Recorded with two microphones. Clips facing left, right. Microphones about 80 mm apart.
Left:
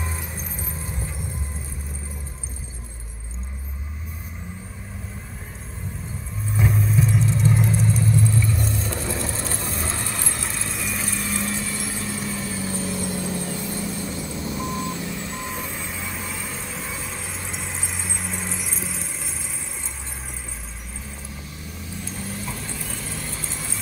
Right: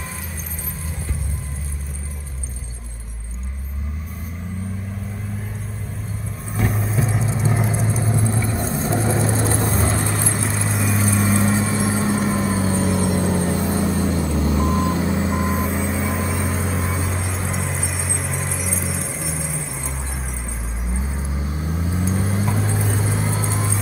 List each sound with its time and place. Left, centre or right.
6.5 s vehicle: centre
7.7 s vehicle: right
15.6 s vehicle: centre
21.5 s vehicle: right